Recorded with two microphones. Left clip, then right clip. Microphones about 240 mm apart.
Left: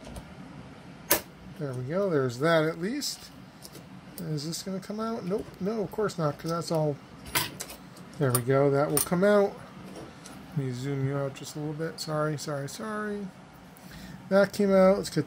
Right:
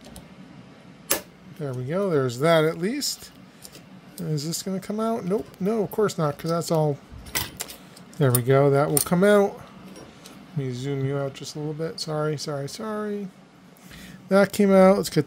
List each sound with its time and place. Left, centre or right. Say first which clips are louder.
1.6 s speech: right 3 dB; right
4.2 s speech: right 5 dB; right
8.2 s speech: right 5 dB; right
10.6 s speech: right 4 dB; right
14.3 s speech: right 4 dB; right